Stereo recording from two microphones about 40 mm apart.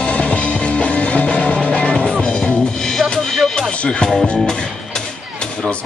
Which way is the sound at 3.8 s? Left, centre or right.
Left.